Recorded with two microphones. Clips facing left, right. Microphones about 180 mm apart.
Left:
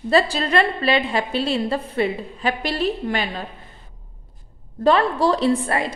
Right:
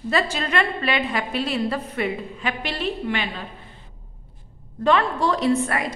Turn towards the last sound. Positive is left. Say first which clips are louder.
# left 1 dB
turn(degrees=30)  # may be behind; listen again after turning